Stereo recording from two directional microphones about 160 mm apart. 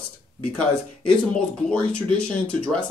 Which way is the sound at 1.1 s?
5° left (ahead or behind).